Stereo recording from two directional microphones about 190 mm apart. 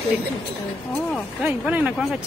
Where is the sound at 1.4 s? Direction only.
5° right (ahead or behind).